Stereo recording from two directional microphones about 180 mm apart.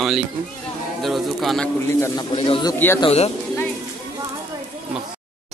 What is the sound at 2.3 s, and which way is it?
Speech, 30° left (ahead or behind).